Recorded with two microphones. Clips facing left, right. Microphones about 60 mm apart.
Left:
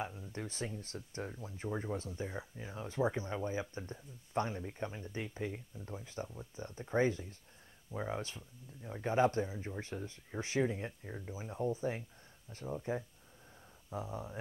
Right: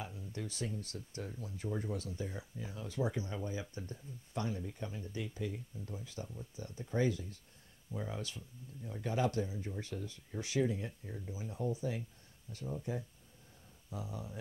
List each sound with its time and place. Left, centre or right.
0.0 s speech: left